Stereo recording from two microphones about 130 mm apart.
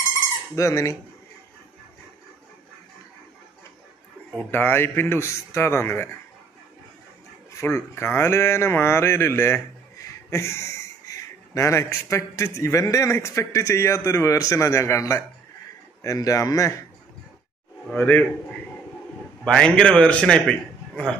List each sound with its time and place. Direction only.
0.6 s speech: 25° left (ahead or behind)
4.5 s a man's voice: 15° left (ahead or behind)
7.6 s speech: 20° left (ahead or behind)
17.9 s a man's voice: 10° left (ahead or behind)
19.4 s a man's voice: 10° left (ahead or behind)